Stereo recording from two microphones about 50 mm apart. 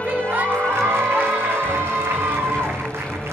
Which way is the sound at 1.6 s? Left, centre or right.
Right.